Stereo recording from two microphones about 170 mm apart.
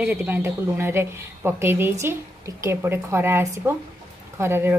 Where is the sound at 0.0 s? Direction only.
10° right (ahead or behind).